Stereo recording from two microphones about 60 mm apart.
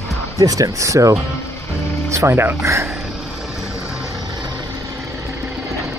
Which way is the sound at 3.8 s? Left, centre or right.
Centre.